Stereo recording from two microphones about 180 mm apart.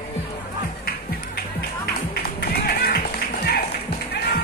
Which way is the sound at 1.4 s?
60° left (ahead or behind).